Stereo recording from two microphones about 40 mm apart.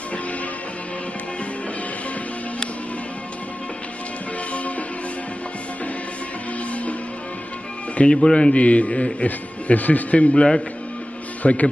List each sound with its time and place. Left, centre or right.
6.7 s music: left
8.0 s a man's voice: left
11.4 s a man's voice: left